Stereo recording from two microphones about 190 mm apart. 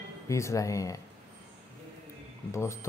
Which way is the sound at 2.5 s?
15° left (ahead or behind).